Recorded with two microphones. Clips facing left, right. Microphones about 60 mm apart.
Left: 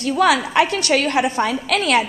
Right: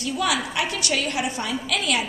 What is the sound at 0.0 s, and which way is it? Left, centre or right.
A woman's voice, left.